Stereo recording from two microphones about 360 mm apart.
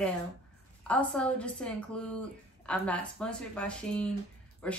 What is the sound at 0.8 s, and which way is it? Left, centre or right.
A woman's voice, centre.